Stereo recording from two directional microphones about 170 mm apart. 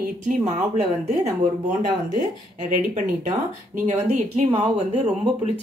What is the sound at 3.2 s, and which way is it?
Speech, 45° right (ahead or behind).